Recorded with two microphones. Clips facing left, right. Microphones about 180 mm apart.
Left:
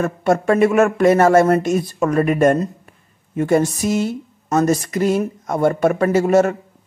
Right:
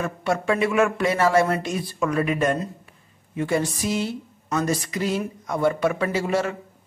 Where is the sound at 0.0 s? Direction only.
45° left (ahead or behind).